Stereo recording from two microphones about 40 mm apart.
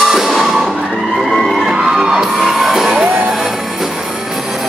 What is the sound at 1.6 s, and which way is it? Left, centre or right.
Crowd, right.